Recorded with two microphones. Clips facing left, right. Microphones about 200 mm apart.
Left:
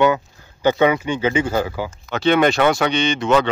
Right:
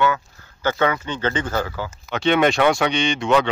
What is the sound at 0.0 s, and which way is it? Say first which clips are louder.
Speech: left 4 dB; 15° left (ahead or behind).